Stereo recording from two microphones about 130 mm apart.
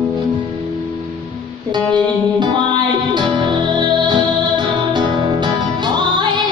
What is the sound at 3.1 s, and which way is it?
Music, 35° right (ahead or behind).